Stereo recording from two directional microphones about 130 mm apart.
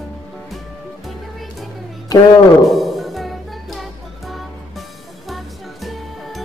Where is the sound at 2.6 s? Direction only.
Centre (ahead or behind).